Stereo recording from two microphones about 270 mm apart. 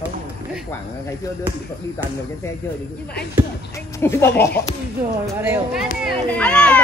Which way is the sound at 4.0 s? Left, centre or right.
Centre.